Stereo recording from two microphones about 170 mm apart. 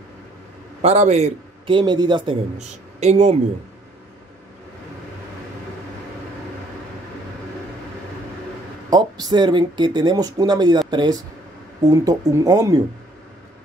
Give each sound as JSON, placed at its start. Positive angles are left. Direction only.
{"t": 0.8, "sound": "a man's voice", "side_deg": -40}
{"t": 1.8, "sound": "speech", "side_deg": -25}
{"t": 2.5, "sound": "speech", "side_deg": -40}
{"t": 8.9, "sound": "speech", "side_deg": -25}